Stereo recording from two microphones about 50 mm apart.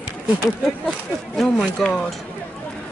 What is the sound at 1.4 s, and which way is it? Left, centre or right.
Speech, centre.